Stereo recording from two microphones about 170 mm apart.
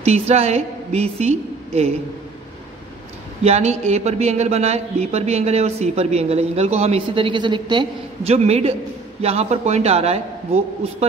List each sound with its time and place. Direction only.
0.0 s a woman's voice: 40° right (ahead or behind)
3.4 s a man's voice: 40° right (ahead or behind)